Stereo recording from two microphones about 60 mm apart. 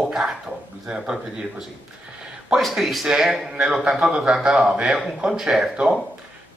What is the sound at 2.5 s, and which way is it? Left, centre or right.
A man's voice, centre.